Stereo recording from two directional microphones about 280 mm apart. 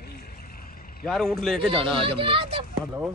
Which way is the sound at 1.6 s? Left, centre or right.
Centre.